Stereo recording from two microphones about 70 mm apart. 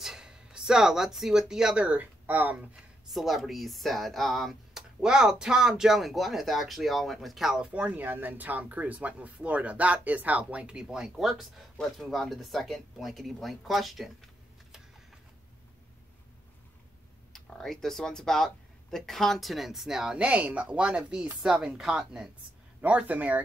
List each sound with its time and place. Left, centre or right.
0.0 s speech: centre; by 2.6 s right
3.1 s speech: centre
5.0 s speech: centre
17.3 s speech: centre
22.8 s speech: right